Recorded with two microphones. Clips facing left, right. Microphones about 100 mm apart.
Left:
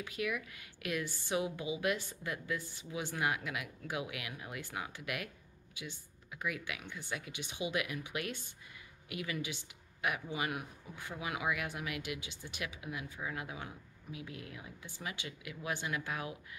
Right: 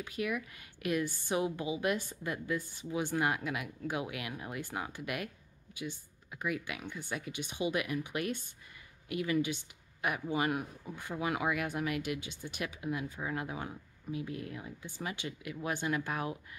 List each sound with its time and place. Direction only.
0.0 s speech: 30° right (ahead or behind)
6.3 s speech: 35° right (ahead or behind)